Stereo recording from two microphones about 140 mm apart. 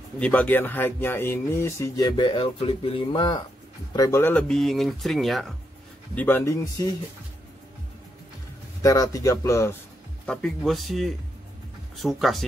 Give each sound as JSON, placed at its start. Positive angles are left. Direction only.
{"t": 0.2, "sound": "speech", "side_deg": 10}
{"t": 3.9, "sound": "speech", "side_deg": 25}
{"t": 6.1, "sound": "speech", "side_deg": 15}
{"t": 8.8, "sound": "speech", "side_deg": 25}
{"t": 10.2, "sound": "speech", "side_deg": 5}